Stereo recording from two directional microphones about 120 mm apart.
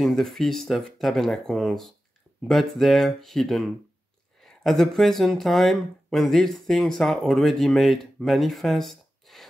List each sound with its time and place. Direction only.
0.0 s speech: centre (ahead or behind)